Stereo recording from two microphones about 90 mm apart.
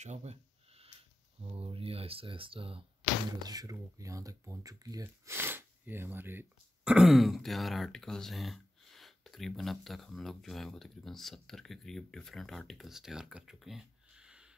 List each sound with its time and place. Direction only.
1.4 s speech: 90° right
3.4 s speech: 40° right (ahead or behind)
5.0 s speech: 30° right (ahead or behind)
6.8 s speech: 10° right (ahead or behind)